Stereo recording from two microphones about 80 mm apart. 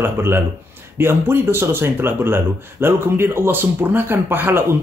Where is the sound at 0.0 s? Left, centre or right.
Right.